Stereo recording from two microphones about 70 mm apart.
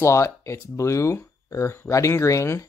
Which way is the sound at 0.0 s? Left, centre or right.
Left.